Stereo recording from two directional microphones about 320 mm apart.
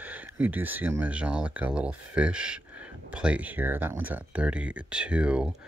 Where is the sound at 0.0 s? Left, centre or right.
Centre.